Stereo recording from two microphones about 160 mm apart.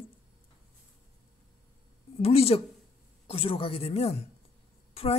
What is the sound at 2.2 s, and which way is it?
A woman's voice, 40° left (ahead or behind).